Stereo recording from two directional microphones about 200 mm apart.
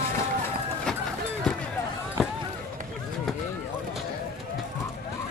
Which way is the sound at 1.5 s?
5° left (ahead or behind).